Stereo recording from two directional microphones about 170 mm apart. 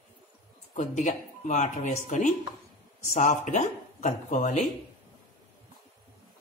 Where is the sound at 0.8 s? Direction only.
45° left (ahead or behind).